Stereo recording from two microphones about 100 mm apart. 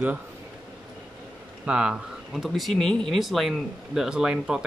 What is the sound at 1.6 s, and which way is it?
Speech, 10° right (ahead or behind).